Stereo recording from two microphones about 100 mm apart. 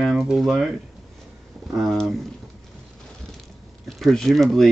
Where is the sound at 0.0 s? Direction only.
Centre (ahead or behind).